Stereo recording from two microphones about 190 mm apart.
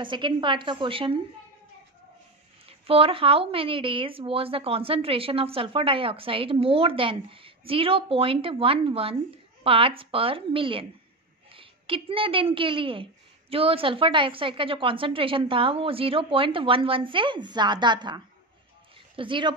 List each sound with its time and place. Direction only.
0.0 s a woman's voice: 25° right (ahead or behind)
2.9 s a woman's voice: 30° right (ahead or behind)